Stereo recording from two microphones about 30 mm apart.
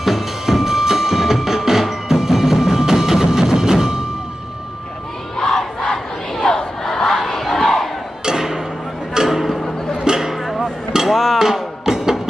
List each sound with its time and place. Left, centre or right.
0.0 s music: centre
5.4 s crowd: left
6.4 s battle cry: left
7.5 s crowd: centre
8.3 s music: centre
10.3 s music: centre
10.6 s a sound: centre
11.1 s music: centre
11.3 s music: centre